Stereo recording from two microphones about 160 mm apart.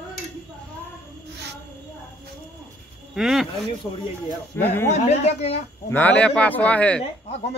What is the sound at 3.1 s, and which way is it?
Speech, centre (ahead or behind).